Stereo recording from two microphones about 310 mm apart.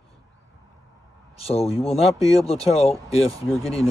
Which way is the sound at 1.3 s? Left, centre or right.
Centre.